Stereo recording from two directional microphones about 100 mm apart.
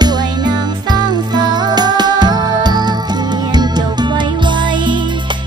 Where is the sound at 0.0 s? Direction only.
45° right (ahead or behind).